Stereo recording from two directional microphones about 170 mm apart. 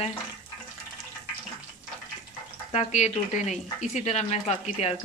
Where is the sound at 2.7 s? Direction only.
40° left (ahead or behind).